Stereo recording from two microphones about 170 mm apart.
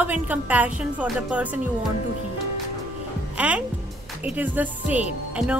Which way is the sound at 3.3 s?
10° right (ahead or behind).